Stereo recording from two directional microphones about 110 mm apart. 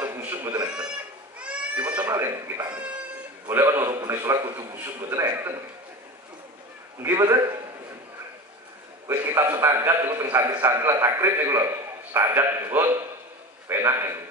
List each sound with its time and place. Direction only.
0.0 s a sound: 15° right (ahead or behind)
1.4 s goat: 10° right (ahead or behind)
2.4 s speech: 35° right (ahead or behind)
3.4 s a man's voice: 20° right (ahead or behind)
7.0 s a man's voice: 25° right (ahead or behind)
9.0 s a man's voice: 20° right (ahead or behind)